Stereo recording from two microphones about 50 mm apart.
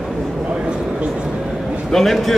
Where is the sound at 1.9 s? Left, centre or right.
Centre.